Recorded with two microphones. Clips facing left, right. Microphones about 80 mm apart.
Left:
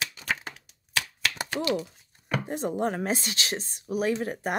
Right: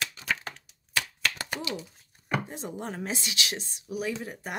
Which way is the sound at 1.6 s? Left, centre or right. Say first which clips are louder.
Left 8 dB; left.